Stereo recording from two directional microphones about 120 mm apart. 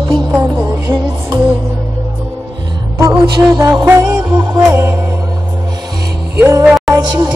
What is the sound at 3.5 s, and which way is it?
Music, 25° right (ahead or behind).